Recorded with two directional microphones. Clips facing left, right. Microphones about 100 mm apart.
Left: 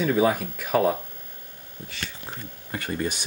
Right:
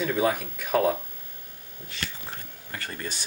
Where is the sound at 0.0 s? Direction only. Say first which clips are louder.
Left 3 dB; 5° left (ahead or behind).